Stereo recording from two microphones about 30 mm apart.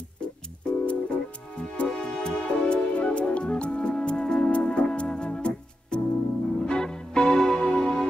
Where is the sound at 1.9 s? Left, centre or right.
Left.